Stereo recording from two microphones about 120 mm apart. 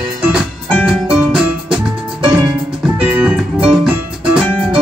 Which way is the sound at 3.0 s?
10° right (ahead or behind).